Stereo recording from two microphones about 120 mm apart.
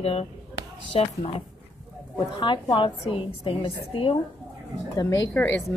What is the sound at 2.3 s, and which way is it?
A woman's voice, 40° left (ahead or behind).